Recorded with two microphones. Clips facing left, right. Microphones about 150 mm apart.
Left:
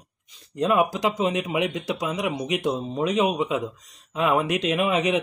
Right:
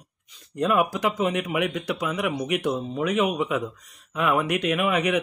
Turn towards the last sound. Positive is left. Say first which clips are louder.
# left 1 dB
turn(degrees=25)  # may be behind; listen again after turning